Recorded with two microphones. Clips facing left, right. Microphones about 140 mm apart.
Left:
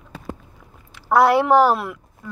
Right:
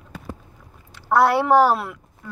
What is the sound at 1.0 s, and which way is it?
Speech, centre (ahead or behind).